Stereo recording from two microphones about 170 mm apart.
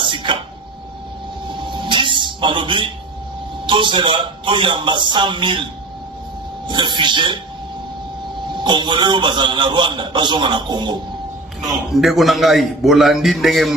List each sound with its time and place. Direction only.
0.0 s a sound: 30° right (ahead or behind)
1.5 s a sound: 25° right (ahead or behind)
3.6 s a man's voice: 30° right (ahead or behind)
6.7 s speech: 25° right (ahead or behind)
8.5 s a man's voice: 25° right (ahead or behind)
11.6 s a man's voice: centre (ahead or behind)